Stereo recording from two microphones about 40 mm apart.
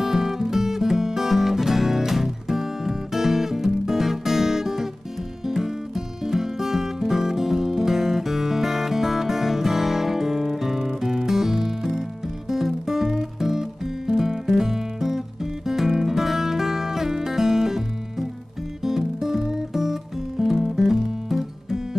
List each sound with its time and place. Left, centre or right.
0.0 s music: centre
18.9 s music: centre